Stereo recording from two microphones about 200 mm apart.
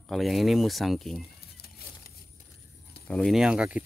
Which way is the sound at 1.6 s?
50° left (ahead or behind).